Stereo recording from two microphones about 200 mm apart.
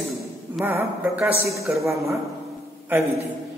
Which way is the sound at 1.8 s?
15° right (ahead or behind).